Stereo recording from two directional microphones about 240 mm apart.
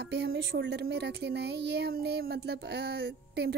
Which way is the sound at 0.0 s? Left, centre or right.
Right.